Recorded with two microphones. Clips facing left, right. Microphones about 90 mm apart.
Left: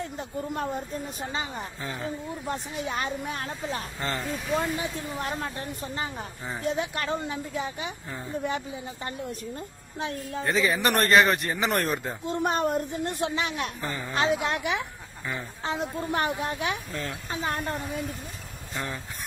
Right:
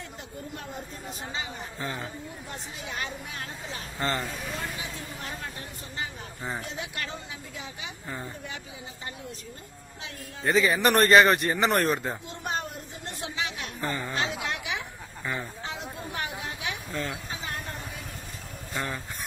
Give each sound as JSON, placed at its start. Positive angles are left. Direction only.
{"t": 1.8, "sound": "a man's voice", "side_deg": 0}
{"t": 2.4, "sound": "a woman's voice", "side_deg": 45}
{"t": 4.0, "sound": "a man's voice", "side_deg": 0}
{"t": 4.9, "sound": "a woman's voice", "side_deg": 50}
{"t": 6.7, "sound": "a woman's voice", "side_deg": 45}
{"t": 10.4, "sound": "a man's voice", "side_deg": 0}
{"t": 12.3, "sound": "a woman's voice", "side_deg": 50}
{"t": 13.7, "sound": "a man's voice", "side_deg": 0}
{"t": 14.1, "sound": "a woman's voice", "side_deg": 45}
{"t": 16.9, "sound": "a man's voice", "side_deg": 0}
{"t": 17.3, "sound": "a woman's voice", "side_deg": 50}